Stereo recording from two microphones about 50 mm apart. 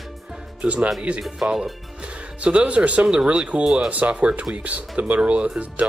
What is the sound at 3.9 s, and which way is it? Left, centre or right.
Speech, right.